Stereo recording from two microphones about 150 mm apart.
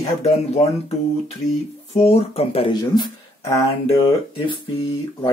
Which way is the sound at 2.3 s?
40° left (ahead or behind).